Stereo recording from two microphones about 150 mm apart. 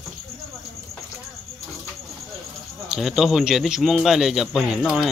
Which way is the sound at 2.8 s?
5° right (ahead or behind).